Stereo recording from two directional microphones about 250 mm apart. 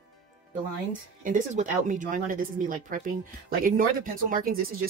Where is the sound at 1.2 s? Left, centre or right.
Right.